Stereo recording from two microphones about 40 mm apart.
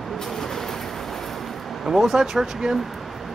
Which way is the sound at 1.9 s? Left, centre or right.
Centre.